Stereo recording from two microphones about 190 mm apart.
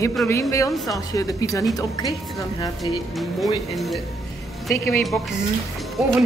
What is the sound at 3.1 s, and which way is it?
Speech, centre (ahead or behind).